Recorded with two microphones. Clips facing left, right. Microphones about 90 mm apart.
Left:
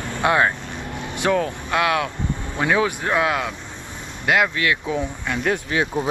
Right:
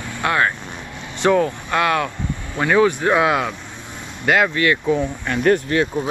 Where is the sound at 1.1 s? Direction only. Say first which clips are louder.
Right 4 dB; centre (ahead or behind).